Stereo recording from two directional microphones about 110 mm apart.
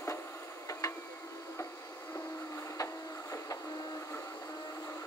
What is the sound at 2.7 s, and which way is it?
Printer, 30° left (ahead or behind).